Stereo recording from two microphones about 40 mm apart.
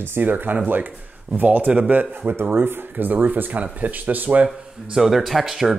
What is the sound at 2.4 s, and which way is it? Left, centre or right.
Speech, right.